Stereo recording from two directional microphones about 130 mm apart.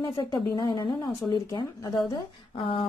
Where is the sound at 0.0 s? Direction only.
25° left (ahead or behind).